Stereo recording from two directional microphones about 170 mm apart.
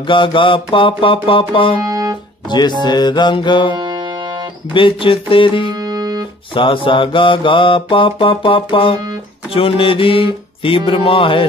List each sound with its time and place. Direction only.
0.0 s mantra: 30° left (ahead or behind)
1.9 s music: 20° right (ahead or behind)
2.8 s music: 25° left (ahead or behind)
3.7 s music: 25° right (ahead or behind)
4.7 s mantra: 30° left (ahead or behind)
5.7 s music: 20° right (ahead or behind)
6.5 s mantra: 30° left (ahead or behind)